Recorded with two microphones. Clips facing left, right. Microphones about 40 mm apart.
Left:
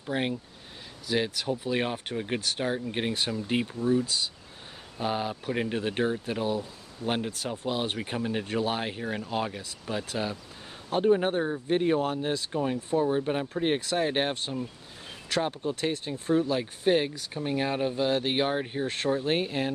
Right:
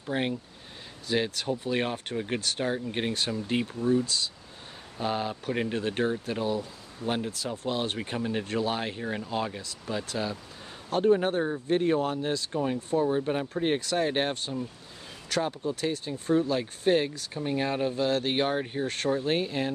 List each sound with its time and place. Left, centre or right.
0.0 s speech: centre
4.0 s speech: centre
7.0 s speech: right
7.6 s speech: centre
14.3 s speech: left
16.4 s speech: centre